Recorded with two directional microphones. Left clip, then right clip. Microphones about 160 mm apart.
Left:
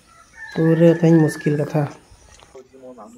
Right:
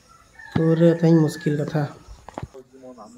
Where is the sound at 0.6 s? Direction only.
5° left (ahead or behind).